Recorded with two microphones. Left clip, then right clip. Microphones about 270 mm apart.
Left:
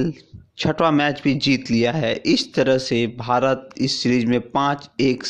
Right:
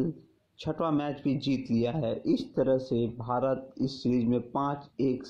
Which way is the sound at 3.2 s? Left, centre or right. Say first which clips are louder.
Left 11 dB; left.